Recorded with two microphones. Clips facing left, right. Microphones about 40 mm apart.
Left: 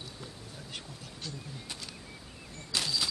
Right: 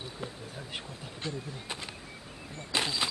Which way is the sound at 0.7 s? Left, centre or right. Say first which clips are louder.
Right 3 dB; right.